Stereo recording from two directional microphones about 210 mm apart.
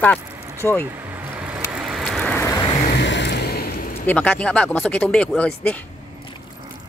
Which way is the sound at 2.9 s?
55° left (ahead or behind).